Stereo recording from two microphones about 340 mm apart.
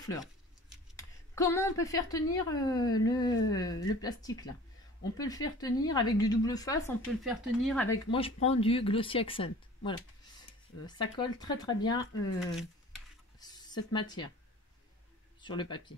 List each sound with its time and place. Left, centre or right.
0.9 s a woman's voice: centre
8.1 s a woman's voice: centre
15.4 s a woman's voice: centre